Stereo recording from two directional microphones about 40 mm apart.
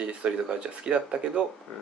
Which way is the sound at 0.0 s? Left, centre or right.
Right.